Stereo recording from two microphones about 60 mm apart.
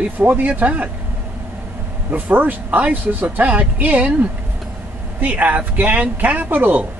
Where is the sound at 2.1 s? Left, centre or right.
Right.